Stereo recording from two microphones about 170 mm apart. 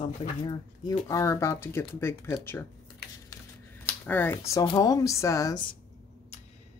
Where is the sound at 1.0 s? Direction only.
20° left (ahead or behind).